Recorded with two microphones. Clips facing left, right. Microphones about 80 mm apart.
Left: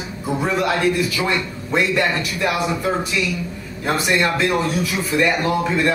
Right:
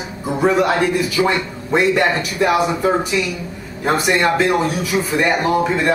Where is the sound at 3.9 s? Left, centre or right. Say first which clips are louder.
Right 3 dB; right.